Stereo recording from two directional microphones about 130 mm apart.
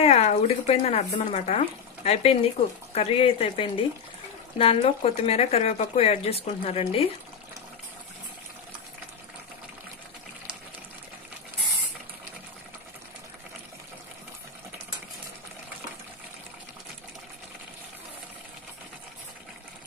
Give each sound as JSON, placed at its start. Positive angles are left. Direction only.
{"t": 0.0, "sound": "speech", "side_deg": 55}